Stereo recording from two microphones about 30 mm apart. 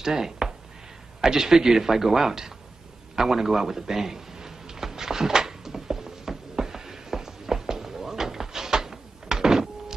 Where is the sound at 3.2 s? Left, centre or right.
Centre.